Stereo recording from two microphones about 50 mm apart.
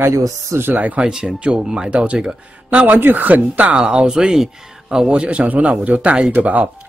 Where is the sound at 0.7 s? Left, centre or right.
Right.